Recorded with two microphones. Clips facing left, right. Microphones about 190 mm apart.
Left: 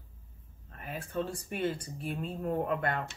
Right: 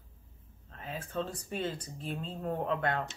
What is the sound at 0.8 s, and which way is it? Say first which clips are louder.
Speech: left 1 dB; 10° left (ahead or behind).